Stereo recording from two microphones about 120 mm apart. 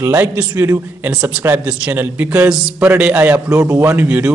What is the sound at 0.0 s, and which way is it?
A man's voice, 20° right (ahead or behind).